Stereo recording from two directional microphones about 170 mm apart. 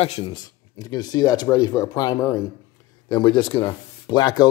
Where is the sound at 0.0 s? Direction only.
35° left (ahead or behind).